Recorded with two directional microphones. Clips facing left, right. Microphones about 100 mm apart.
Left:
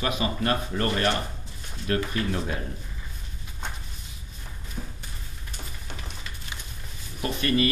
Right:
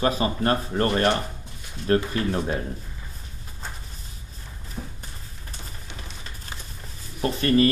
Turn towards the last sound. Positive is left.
turn(degrees=-35)  # may be behind; listen again after turning